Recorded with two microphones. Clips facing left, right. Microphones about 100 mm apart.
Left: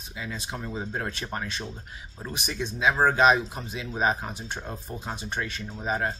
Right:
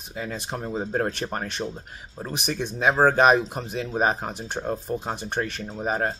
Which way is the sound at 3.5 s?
55° right (ahead or behind).